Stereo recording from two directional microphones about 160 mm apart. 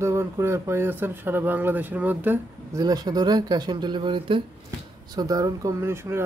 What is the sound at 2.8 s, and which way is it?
Speech, 25° right (ahead or behind).